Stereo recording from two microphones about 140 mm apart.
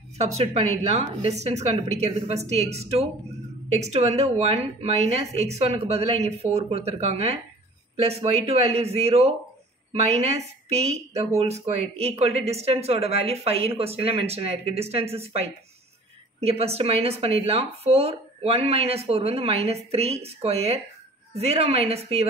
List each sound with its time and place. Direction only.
0.2 s speech: 50° right (ahead or behind)